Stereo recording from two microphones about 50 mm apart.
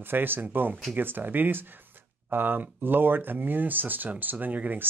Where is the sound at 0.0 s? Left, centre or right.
Right.